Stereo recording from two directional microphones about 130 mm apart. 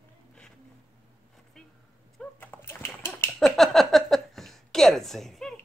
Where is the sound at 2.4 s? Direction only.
15° left (ahead or behind).